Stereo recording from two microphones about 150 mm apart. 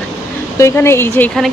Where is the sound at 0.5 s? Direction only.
20° left (ahead or behind).